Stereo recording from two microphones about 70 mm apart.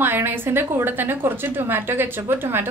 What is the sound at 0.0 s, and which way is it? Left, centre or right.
A woman's voice, right.